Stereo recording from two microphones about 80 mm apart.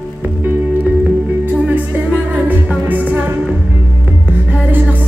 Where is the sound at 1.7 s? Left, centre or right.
Centre.